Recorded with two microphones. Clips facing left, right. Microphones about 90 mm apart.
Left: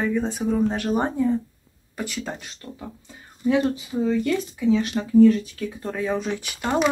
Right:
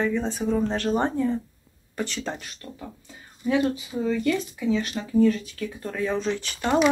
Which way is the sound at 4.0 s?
25° left (ahead or behind).